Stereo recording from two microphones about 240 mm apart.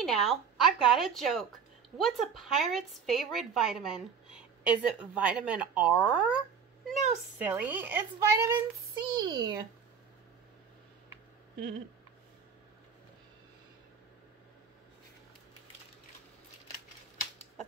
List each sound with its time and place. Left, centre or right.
0.0 s a woman's voice: centre